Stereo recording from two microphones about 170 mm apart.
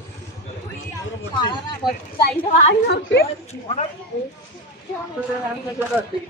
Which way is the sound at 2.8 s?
90° left.